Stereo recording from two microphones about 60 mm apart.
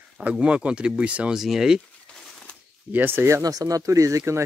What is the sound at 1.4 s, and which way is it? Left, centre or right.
Speech, centre.